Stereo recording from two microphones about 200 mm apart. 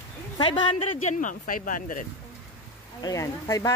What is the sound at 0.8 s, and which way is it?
Speech, 40° left (ahead or behind).